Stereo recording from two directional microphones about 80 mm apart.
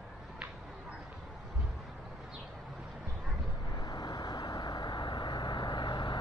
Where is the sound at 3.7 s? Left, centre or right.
Left.